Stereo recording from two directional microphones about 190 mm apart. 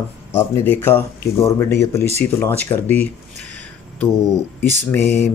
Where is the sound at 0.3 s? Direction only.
10° left (ahead or behind).